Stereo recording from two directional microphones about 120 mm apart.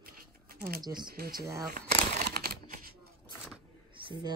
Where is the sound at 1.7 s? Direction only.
70° right (ahead or behind).